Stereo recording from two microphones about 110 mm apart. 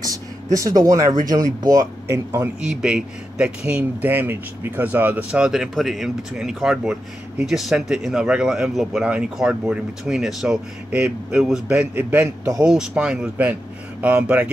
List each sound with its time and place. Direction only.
0.0 s speech: 30° right (ahead or behind)
2.6 s speech: 5° right (ahead or behind)
12.6 s speech: 5° right (ahead or behind)